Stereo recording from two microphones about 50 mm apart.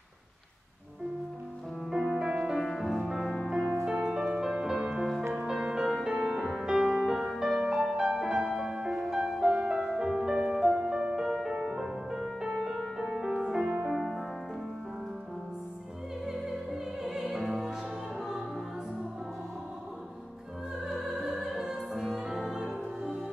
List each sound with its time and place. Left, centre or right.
1.9 s music: centre
6.3 s music: centre
6.6 s music: centre
11.2 s music: centre
12.7 s music: centre
17.3 s music: centre
20.9 s opera: centre
22.4 s music: centre